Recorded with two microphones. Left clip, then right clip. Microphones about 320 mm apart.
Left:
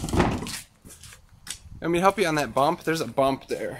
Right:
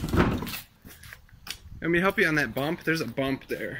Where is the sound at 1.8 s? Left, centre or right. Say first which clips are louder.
Left 2 dB; centre.